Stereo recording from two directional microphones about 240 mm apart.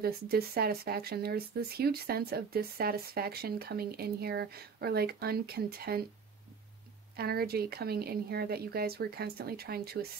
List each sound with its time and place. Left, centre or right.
0.0 s speech: right
7.2 s speech: right